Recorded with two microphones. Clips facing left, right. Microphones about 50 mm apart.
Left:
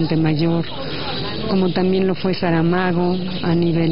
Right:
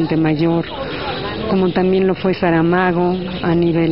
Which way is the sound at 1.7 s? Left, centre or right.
Centre.